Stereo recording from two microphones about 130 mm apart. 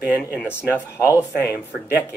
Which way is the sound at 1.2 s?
20° left (ahead or behind).